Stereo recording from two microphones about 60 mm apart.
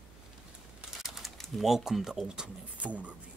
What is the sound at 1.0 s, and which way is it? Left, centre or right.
Speech, centre.